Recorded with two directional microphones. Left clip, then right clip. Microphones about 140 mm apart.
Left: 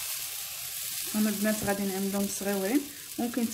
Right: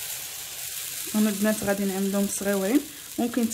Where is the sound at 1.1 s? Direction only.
15° right (ahead or behind).